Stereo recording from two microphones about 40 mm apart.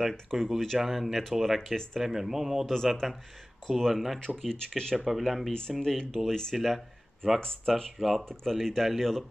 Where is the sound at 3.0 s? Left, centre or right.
Centre.